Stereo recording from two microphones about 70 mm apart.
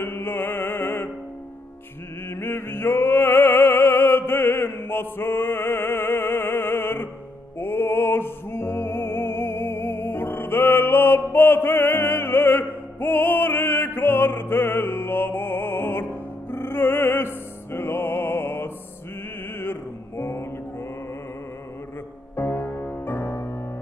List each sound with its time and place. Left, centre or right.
0.0 s music: left
2.2 s music: left
19.6 s mantra: left
22.3 s music: left